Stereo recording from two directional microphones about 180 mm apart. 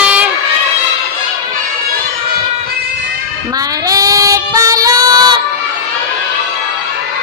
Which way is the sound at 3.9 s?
20° right (ahead or behind).